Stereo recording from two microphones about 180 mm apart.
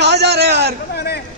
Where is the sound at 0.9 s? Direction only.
60° left (ahead or behind).